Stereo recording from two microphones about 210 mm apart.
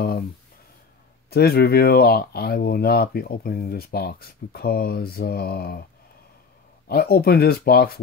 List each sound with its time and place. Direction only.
1.3 s speech: 45° left (ahead or behind)
6.9 s speech: 45° left (ahead or behind)